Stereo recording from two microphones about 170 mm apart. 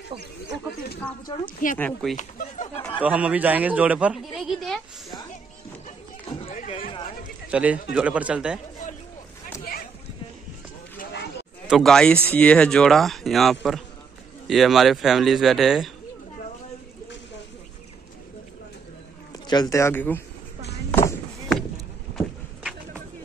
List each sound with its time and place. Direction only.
1.4 s speech: 50° left (ahead or behind)
1.8 s speech: 5° left (ahead or behind)
2.1 s speech: 45° left (ahead or behind)
3.0 s speech: 10° right (ahead or behind)
6.4 s run: 45° left (ahead or behind)
7.5 s speech: 10° right (ahead or behind)
11.6 s speech: centre (ahead or behind)
19.4 s speech: 25° left (ahead or behind)
20.9 s a sound: 15° left (ahead or behind)
22.1 s a sound: 5° right (ahead or behind)